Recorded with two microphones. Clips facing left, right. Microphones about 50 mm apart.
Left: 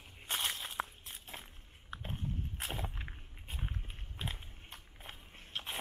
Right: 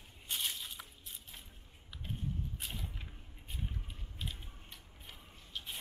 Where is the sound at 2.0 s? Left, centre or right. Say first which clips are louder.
Right 1 dB; left.